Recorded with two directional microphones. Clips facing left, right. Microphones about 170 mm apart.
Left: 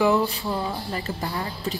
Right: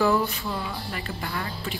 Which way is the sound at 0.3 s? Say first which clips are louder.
Left 4 dB; 30° left (ahead or behind).